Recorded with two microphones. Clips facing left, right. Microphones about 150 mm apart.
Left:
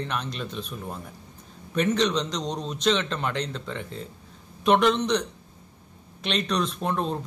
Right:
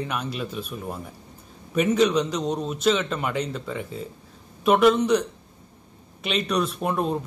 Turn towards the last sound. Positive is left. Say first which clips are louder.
# right 2 dB
turn(degrees=-10)  # may be behind; listen again after turning